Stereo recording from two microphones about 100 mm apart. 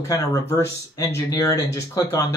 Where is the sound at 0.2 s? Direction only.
30° left (ahead or behind).